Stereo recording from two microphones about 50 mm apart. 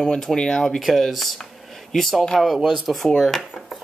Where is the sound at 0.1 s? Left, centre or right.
Centre.